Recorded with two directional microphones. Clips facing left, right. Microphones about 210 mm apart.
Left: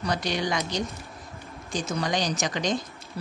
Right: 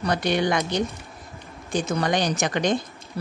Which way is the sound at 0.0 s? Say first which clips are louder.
Right 5 dB; 60° right (ahead or behind).